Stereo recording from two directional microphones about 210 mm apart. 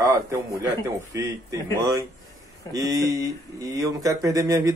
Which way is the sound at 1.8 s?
15° right (ahead or behind).